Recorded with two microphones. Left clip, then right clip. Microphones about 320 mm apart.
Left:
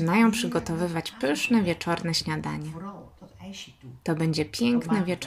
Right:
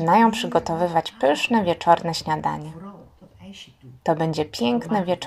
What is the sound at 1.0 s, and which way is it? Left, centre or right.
Speech, centre.